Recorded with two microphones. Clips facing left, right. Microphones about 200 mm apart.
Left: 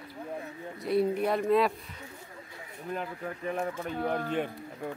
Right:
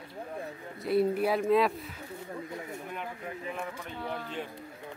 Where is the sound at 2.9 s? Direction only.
40° left (ahead or behind).